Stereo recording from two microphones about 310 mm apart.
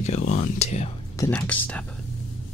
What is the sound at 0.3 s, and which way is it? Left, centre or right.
Speech, left.